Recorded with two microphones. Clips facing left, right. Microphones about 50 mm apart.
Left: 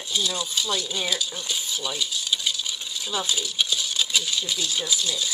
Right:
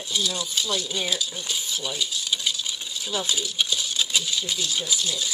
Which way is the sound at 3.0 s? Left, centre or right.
Centre.